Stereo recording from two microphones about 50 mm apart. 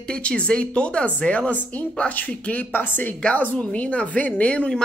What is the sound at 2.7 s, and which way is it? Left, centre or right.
Speech, left.